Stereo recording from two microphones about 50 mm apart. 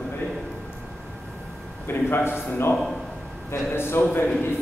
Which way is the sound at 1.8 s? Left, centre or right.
Left.